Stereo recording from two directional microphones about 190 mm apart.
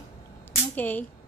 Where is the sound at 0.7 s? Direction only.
10° left (ahead or behind).